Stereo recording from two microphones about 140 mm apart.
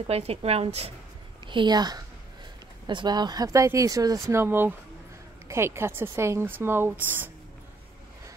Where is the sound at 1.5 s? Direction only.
35° right (ahead or behind); by 7.2 s 15° right (ahead or behind).